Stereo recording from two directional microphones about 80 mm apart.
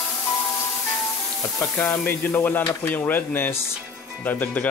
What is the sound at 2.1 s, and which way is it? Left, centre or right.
Speech, left.